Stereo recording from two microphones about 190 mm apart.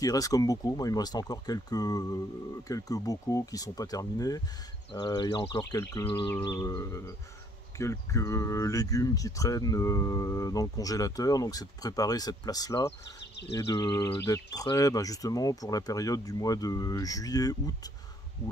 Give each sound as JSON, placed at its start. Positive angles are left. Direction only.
{"t": 0.0, "sound": "speech", "side_deg": 20}
{"t": 6.4, "sound": "a sound", "side_deg": 20}
{"t": 7.7, "sound": "speech", "side_deg": 15}